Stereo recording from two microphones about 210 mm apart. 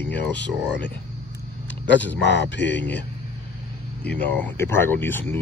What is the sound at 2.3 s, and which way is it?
Speech, 55° left (ahead or behind).